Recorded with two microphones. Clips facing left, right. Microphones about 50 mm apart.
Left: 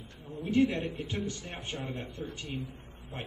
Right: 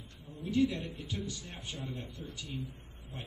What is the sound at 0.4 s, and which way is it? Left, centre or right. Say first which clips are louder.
A man's voice: left 3 dB; left.